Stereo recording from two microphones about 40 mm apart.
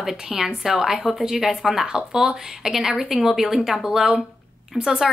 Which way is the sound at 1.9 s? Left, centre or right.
Centre.